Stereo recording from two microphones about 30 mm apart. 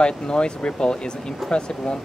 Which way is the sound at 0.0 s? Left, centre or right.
Left.